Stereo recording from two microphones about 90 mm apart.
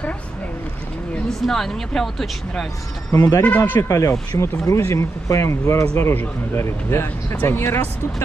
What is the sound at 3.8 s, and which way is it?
Speech, 30° left (ahead or behind).